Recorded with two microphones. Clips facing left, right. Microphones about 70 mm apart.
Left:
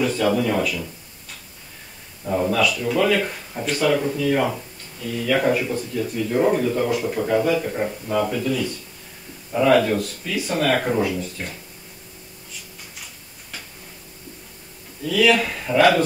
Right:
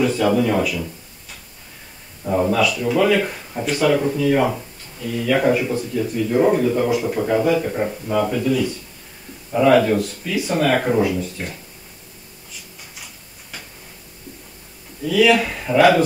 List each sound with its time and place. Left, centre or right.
0.0 s speech: centre
2.2 s speech: centre
12.9 s tick-tock: centre
15.0 s speech: centre